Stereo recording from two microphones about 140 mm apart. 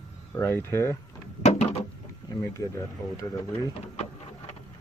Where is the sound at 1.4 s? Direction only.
50° left (ahead or behind).